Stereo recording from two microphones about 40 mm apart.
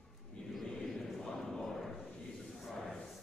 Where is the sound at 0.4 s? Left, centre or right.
Left.